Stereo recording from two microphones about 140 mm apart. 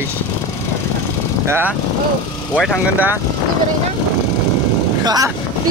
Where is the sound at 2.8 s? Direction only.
15° right (ahead or behind).